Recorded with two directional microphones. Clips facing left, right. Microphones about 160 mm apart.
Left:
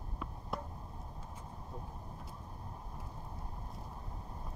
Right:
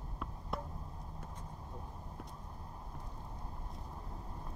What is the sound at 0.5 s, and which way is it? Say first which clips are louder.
Chop: even; centre (ahead or behind).